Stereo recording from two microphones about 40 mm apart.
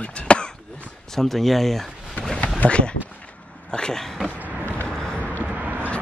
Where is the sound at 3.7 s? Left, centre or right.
Centre.